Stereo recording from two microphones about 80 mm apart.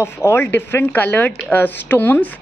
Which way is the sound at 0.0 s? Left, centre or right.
Left.